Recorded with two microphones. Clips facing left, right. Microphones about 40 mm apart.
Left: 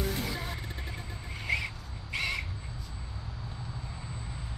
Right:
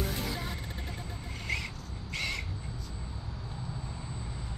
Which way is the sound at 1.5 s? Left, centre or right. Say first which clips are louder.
Left 4 dB; centre.